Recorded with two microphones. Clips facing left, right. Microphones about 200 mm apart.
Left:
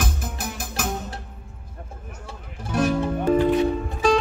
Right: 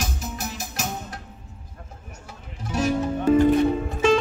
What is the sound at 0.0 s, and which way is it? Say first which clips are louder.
Music: left 1 dB; 55° left (ahead or behind).